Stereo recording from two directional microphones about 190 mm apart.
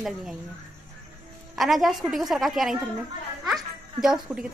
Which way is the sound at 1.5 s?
Centre (ahead or behind).